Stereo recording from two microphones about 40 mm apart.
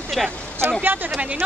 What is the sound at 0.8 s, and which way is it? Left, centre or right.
Speech, right.